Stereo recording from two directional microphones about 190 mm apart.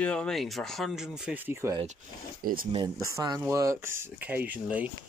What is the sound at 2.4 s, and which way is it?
Speech, 50° right (ahead or behind).